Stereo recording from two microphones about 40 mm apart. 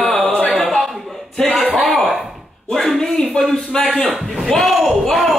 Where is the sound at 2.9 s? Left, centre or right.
Centre.